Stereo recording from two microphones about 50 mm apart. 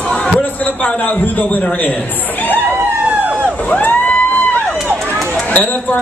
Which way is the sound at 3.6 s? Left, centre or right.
Left.